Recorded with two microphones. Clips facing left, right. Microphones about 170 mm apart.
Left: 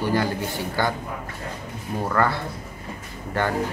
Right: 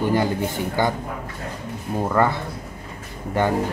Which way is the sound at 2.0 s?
20° right (ahead or behind).